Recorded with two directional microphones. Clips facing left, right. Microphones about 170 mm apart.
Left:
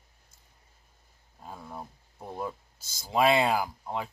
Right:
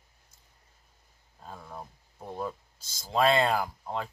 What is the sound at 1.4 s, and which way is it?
Speech, 10° left (ahead or behind).